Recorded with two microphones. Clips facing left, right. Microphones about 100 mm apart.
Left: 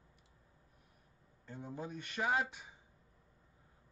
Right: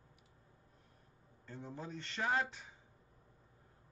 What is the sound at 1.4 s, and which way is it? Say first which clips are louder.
Speech: left 2 dB; 15° left (ahead or behind).